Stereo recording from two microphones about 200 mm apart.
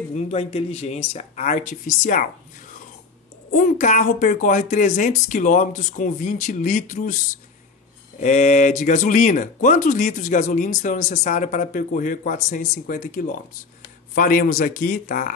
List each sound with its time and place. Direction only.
0.1 s speech: 30° left (ahead or behind)
3.5 s speech: 40° left (ahead or behind)
8.2 s a man's voice: 35° left (ahead or behind)